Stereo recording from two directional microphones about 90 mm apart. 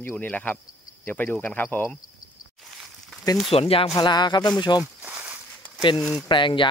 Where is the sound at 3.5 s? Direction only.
90° left.